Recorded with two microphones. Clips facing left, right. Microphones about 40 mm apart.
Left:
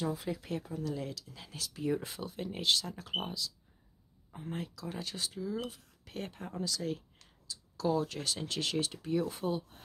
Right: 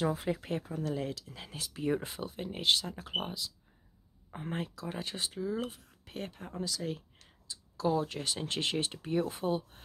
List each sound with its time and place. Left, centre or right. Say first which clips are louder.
0.0 s speech: right 4 dB; right
4.3 s speech: right 3 dB; right
4.6 s speech: right 2 dB; right
6.0 s speech: even; centre